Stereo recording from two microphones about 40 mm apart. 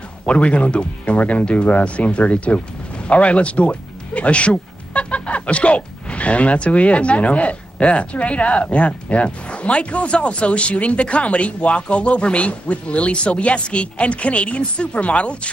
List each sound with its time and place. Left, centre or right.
0.3 s speech: left